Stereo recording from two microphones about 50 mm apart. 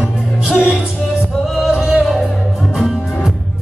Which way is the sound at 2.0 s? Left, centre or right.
Centre.